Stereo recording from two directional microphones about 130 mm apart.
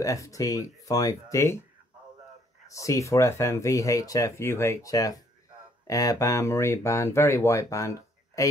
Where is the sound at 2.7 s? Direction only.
25° left (ahead or behind).